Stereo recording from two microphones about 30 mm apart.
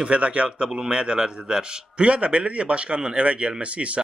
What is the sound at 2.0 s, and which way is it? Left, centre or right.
Speech, right.